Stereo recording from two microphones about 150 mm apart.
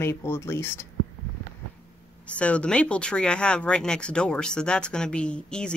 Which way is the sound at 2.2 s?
10° left (ahead or behind).